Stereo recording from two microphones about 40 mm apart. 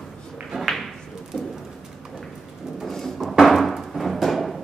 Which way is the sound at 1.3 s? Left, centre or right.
Left.